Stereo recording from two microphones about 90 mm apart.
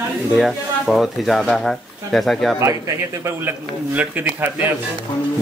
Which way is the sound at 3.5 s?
20° right (ahead or behind).